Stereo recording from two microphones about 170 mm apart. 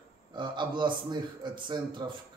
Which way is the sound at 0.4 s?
25° right (ahead or behind).